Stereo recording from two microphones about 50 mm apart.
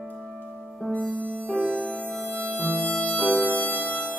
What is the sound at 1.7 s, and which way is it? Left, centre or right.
Music, left.